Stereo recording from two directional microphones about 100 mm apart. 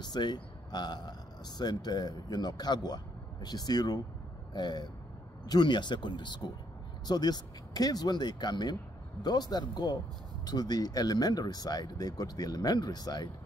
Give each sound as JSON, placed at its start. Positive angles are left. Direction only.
{"t": 0.0, "sound": "a man's voice", "side_deg": 45}